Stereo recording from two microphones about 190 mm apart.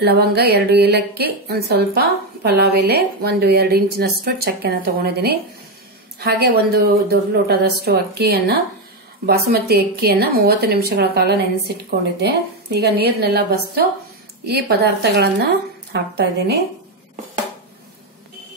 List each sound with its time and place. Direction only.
0.0 s speech: 55° right (ahead or behind)